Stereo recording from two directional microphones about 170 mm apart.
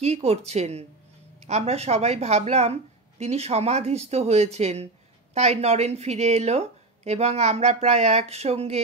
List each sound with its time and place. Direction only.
0.0 s speech: 40° right (ahead or behind)